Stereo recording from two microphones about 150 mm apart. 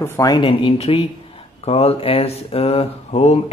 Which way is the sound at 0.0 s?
25° left (ahead or behind).